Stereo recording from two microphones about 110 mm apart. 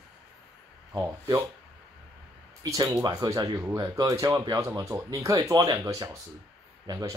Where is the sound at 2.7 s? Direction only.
35° right (ahead or behind).